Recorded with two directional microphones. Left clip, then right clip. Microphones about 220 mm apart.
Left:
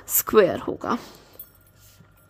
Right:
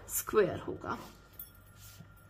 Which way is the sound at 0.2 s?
50° left (ahead or behind).